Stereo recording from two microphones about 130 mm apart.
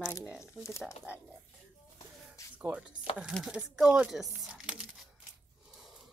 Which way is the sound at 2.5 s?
10° right (ahead or behind).